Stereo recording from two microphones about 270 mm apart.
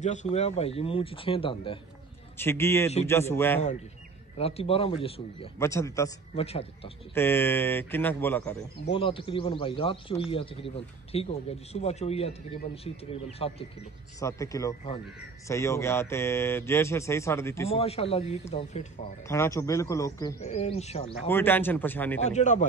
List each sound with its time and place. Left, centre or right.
0.0 s a man's voice: left
2.3 s speech: centre
4.4 s a man's voice: left
6.4 s a man's voice: left
7.2 s speech: centre
8.8 s a man's voice: centre
17.6 s a man's voice: left
19.2 s speech: centre
20.4 s a man's voice: left
21.3 s speech: centre
22.2 s a man's voice: left